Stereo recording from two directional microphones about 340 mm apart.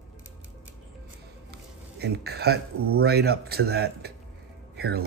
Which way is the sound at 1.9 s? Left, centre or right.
Right.